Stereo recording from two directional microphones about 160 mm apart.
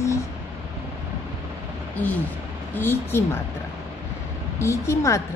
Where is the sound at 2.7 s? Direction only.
15° left (ahead or behind).